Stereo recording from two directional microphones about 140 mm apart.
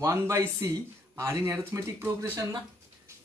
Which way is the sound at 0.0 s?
20° right (ahead or behind).